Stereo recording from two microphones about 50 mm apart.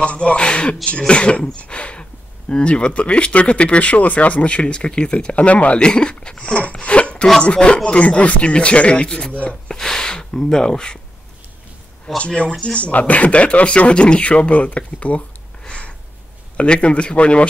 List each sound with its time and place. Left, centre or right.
0.0 s speech: left
9.4 s a sound: left
12.1 s speech: centre
12.7 s speech: left